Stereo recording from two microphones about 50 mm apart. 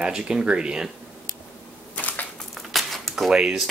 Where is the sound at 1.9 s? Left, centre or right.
Left.